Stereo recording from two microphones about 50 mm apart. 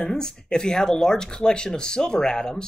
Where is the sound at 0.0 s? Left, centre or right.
Centre.